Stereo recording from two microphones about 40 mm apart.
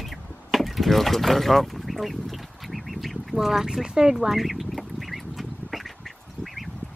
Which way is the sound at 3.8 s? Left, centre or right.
Centre.